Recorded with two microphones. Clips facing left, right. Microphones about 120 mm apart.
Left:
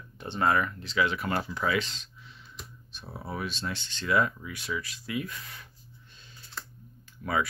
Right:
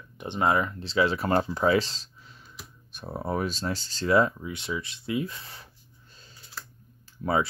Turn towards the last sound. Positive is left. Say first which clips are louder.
# right 5 dB
turn(degrees=-25)  # may be behind; listen again after turning